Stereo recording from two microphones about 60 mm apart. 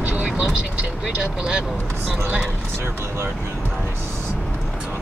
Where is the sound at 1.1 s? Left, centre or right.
Centre.